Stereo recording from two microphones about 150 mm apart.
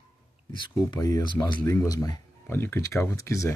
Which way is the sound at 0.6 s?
25° left (ahead or behind).